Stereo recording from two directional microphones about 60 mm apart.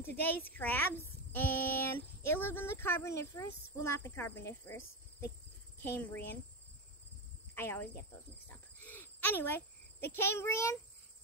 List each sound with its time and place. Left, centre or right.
0.0 s a woman's voice: left
5.8 s speech: left
7.5 s speech: left
8.5 s cricket: left
10.0 s a child's voice: left